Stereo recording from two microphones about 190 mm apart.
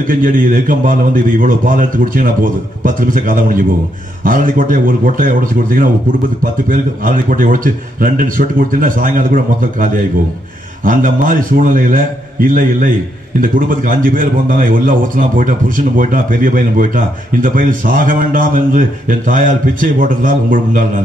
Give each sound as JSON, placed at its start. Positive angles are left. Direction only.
{"t": 0.0, "sound": "a man's voice", "side_deg": -45}